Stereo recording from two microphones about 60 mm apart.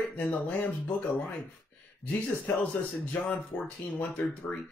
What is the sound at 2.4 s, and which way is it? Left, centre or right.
Speech, left.